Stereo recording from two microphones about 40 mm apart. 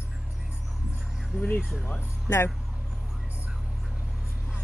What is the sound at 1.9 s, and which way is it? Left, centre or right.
Speech, left.